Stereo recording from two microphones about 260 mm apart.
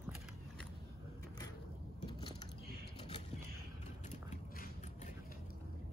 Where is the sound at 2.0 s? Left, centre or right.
Centre.